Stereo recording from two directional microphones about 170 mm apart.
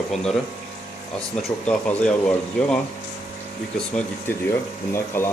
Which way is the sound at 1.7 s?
5° left (ahead or behind).